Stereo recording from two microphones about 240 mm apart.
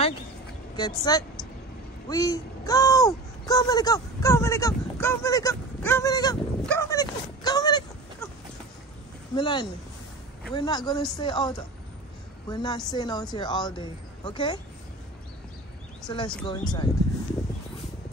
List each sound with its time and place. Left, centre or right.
0.7 s speech: centre
6.6 s a sound: centre
9.3 s a woman's voice: centre
16.1 s speech: left